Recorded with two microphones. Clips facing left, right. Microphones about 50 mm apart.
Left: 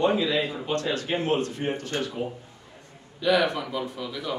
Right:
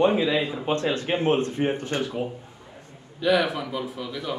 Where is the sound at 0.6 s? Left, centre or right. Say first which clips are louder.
Right 3 dB; right.